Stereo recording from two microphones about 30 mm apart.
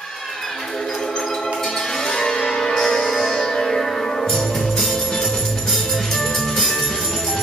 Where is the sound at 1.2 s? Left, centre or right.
Centre.